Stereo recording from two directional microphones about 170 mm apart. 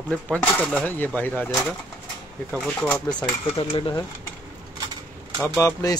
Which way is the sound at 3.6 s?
30° left (ahead or behind).